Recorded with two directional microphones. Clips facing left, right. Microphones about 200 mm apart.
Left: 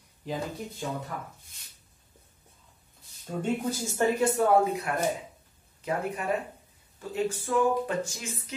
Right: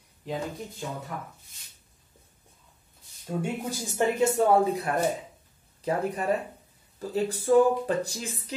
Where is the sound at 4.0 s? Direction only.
20° right (ahead or behind).